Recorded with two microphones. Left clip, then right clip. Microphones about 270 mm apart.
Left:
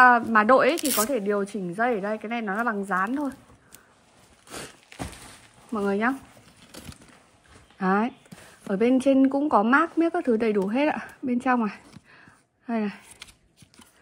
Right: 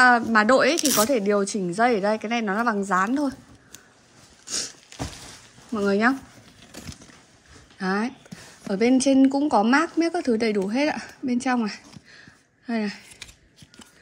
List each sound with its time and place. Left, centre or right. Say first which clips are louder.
0.0 s a woman's voice: even; centre
4.9 s a sound: right 1 dB; left
5.8 s a woman's voice: right 4 dB; centre
7.8 s a woman's voice: left 2 dB; centre